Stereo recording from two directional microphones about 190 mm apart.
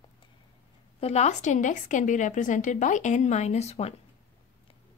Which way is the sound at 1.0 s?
35° left (ahead or behind).